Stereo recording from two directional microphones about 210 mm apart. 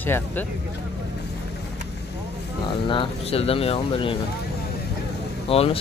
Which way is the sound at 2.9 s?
25° left (ahead or behind).